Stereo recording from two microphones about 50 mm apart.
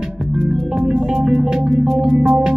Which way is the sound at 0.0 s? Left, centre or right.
Centre.